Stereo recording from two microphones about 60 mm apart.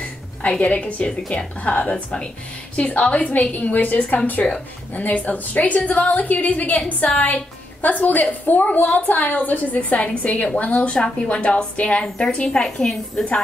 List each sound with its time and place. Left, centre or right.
0.4 s a woman's voice: left